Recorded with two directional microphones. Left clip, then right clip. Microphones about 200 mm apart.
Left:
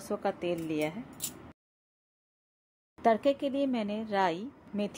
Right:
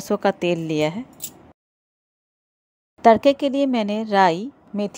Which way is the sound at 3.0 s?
40° right (ahead or behind).